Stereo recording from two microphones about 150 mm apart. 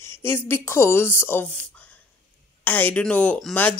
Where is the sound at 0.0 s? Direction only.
15° left (ahead or behind).